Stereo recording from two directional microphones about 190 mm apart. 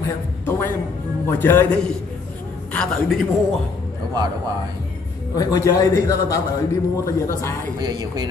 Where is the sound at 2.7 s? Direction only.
5° left (ahead or behind).